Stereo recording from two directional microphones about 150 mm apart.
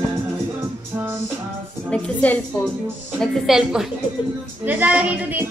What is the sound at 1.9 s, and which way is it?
Speech, 10° left (ahead or behind).